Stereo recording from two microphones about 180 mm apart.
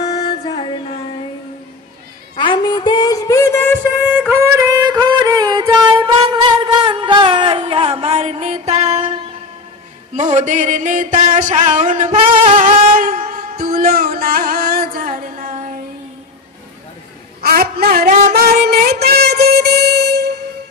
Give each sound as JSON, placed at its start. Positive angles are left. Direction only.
{"t": 0.1, "sound": "music", "side_deg": 30}
{"t": 2.3, "sound": "a sound", "side_deg": 25}
{"t": 4.0, "sound": "music", "side_deg": -5}
{"t": 10.1, "sound": "music", "side_deg": -40}
{"t": 17.4, "sound": "a sound", "side_deg": -55}
{"t": 18.3, "sound": "music", "side_deg": -60}